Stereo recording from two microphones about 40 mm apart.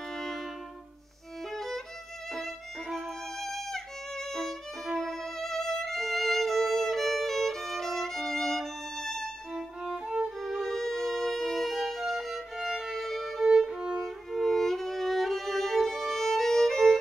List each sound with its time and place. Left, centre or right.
0.1 s music: centre
1.5 s violin: centre
9.5 s violin: centre
9.9 s music: centre
10.4 s music: centre
12.9 s violin: centre
13.6 s violin: centre
14.0 s music: centre